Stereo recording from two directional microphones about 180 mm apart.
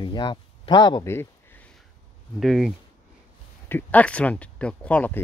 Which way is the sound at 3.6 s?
10° left (ahead or behind).